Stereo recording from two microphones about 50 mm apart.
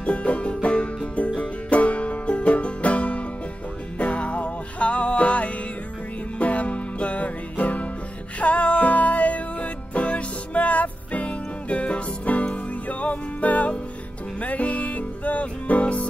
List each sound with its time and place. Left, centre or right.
0.0 s music: left